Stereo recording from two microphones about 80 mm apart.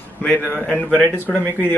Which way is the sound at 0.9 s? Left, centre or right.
Centre.